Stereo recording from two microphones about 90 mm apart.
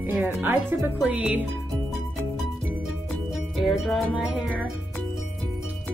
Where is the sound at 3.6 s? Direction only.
Centre (ahead or behind).